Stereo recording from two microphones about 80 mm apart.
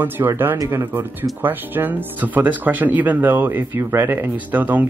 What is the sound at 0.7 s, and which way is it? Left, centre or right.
Speech, right.